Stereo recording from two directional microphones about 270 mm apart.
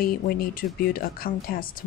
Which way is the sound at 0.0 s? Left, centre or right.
Left.